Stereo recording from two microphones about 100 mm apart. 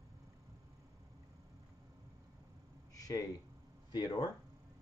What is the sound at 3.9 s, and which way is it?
Speech, 45° left (ahead or behind).